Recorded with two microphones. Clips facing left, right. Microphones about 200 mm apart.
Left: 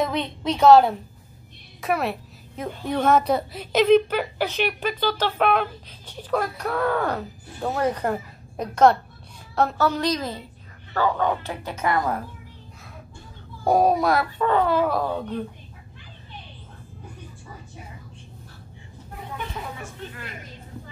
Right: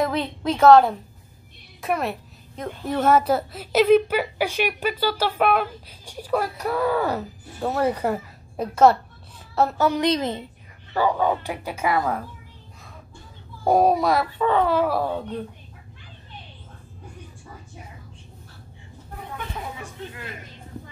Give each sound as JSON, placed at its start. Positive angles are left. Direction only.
{"t": 0.0, "sound": "a woman's voice", "side_deg": 0}
{"t": 1.8, "sound": "a sound", "side_deg": 0}
{"t": 2.9, "sound": "a woman's voice", "side_deg": -5}
{"t": 10.9, "sound": "a woman's voice", "side_deg": -10}
{"t": 13.7, "sound": "speech", "side_deg": 0}
{"t": 19.8, "sound": "speech", "side_deg": -20}